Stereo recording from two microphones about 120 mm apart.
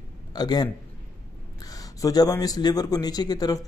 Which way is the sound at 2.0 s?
30° left (ahead or behind).